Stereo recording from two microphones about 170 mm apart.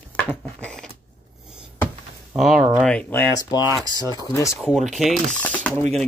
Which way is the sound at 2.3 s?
Centre (ahead or behind).